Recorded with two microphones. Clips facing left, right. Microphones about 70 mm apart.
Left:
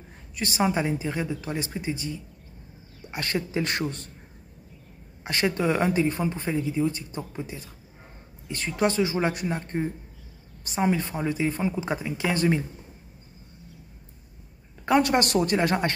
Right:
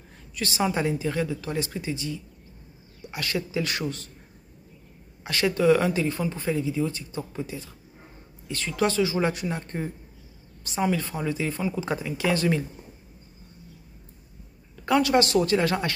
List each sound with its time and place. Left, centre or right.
0.4 s speech: left
5.2 s speech: left
14.9 s speech: left